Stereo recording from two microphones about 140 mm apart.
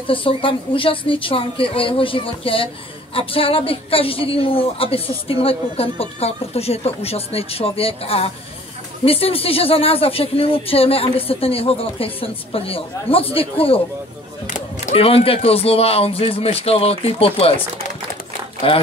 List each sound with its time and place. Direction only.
0.0 s a woman's voice: 40° left (ahead or behind)
15.0 s a woman's voice: 40° left (ahead or behind)